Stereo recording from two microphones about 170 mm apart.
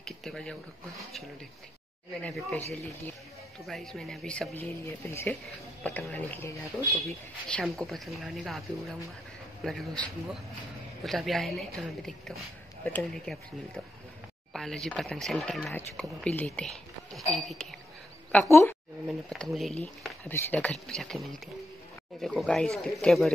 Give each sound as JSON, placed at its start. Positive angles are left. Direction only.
{"t": 0.0, "sound": "speech", "side_deg": 0}
{"t": 5.0, "sound": "speech", "side_deg": 15}
{"t": 7.1, "sound": "speech", "side_deg": 5}
{"t": 18.5, "sound": "a woman's voice", "side_deg": 15}
{"t": 19.0, "sound": "speech", "side_deg": 5}